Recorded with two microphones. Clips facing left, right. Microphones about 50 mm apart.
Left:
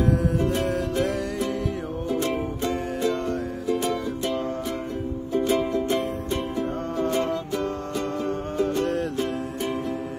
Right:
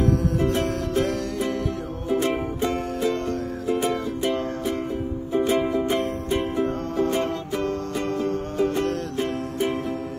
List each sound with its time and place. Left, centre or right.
0.4 s music: centre
3.6 s music: centre
9.2 s music: centre